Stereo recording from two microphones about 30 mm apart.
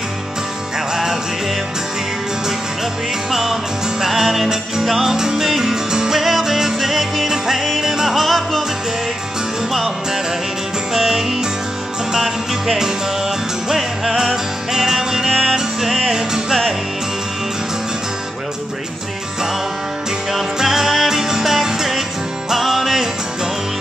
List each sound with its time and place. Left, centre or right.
3.3 s music: centre
5.1 s music: centre
9.7 s music: centre
20.5 s music: centre